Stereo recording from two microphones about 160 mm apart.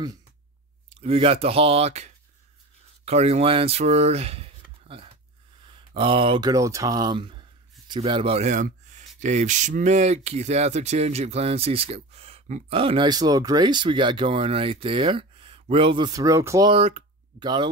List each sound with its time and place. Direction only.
0.8 s speech: 35° right (ahead or behind)
3.1 s speech: 40° right (ahead or behind)
12.7 s speech: 35° right (ahead or behind)
16.7 s speech: 35° right (ahead or behind)